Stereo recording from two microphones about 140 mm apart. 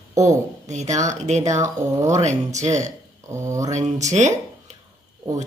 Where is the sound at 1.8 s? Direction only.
20° right (ahead or behind).